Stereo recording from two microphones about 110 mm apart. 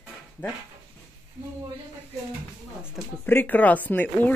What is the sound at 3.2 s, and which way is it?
Speech, 15° left (ahead or behind).